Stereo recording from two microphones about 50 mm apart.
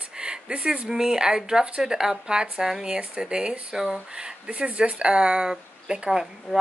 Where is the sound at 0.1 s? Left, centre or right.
Centre.